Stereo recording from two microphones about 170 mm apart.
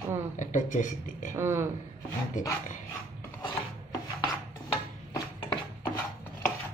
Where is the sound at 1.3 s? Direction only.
15° right (ahead or behind).